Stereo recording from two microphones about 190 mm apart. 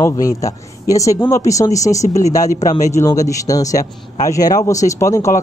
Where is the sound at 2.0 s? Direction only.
35° left (ahead or behind).